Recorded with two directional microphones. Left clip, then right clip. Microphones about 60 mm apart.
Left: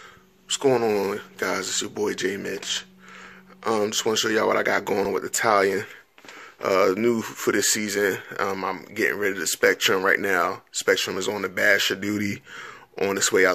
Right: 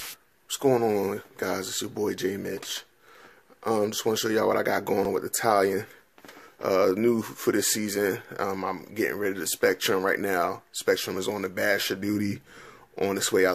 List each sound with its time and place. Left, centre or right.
0.7 s speech: centre
8.4 s speech: centre